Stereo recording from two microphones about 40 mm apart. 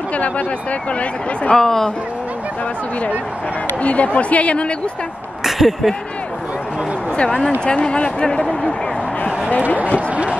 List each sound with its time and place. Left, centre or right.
1.5 s speech: centre
3.8 s speech: left
5.4 s speech: centre
7.2 s speech: left
9.9 s speech: right